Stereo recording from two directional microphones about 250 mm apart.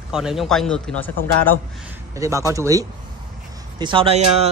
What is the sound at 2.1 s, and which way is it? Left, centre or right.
Speech, centre.